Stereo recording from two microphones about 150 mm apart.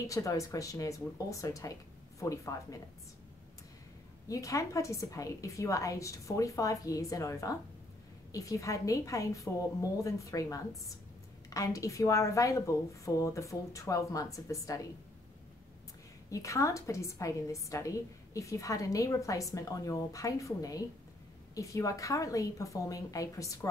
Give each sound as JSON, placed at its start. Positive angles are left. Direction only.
{"t": 0.0, "sound": "a woman's voice", "side_deg": 20}
{"t": 4.3, "sound": "a woman's voice", "side_deg": 20}
{"t": 16.3, "sound": "a woman's voice", "side_deg": 20}